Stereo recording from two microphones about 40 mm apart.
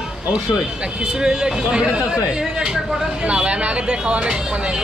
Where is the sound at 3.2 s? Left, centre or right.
Right.